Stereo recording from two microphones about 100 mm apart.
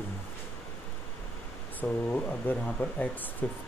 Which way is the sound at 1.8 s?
15° left (ahead or behind).